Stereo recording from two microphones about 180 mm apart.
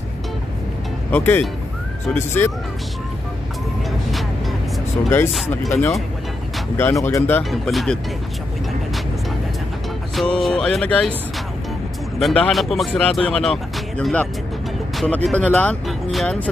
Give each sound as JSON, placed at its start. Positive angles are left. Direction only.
{"t": 1.1, "sound": "speech", "side_deg": 10}
{"t": 5.7, "sound": "speech", "side_deg": 15}
{"t": 10.1, "sound": "speech", "side_deg": 5}
{"t": 12.2, "sound": "speech", "side_deg": 0}